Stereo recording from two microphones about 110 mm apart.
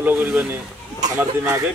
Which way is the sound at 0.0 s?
15° right (ahead or behind).